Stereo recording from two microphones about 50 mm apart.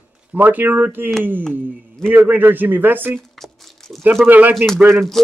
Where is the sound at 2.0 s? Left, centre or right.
Right.